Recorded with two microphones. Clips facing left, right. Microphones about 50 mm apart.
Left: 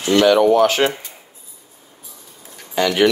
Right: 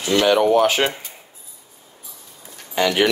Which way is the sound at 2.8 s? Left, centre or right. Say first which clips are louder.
Left 2 dB; centre.